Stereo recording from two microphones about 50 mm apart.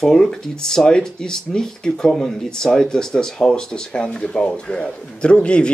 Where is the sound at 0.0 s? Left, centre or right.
Centre.